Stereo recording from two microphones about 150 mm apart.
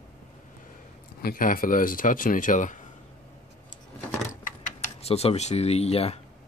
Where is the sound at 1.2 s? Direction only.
70° left (ahead or behind).